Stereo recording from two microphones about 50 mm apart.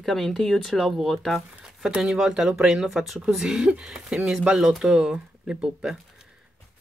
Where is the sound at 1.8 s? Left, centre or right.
Centre.